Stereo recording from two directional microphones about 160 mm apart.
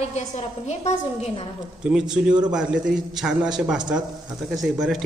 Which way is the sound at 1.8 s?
5° right (ahead or behind).